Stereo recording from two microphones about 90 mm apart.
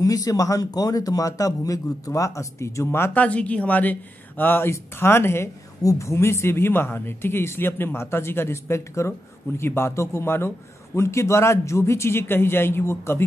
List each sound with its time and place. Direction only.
0.0 s a man's voice: 40° left (ahead or behind)
3.2 s speech: 15° left (ahead or behind)